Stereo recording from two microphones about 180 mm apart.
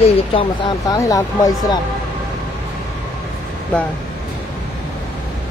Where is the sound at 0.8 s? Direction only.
20° left (ahead or behind).